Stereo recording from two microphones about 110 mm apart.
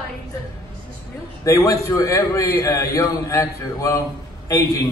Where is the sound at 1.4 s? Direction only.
30° left (ahead or behind).